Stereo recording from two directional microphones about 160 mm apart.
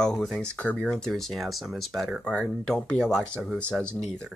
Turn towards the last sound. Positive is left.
turn(degrees=5)  # may be behind; listen again after turning